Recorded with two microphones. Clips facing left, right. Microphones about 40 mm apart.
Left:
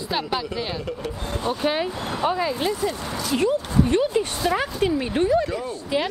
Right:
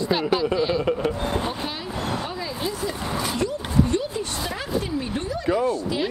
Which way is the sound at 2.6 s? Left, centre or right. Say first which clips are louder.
Left 3 dB; left.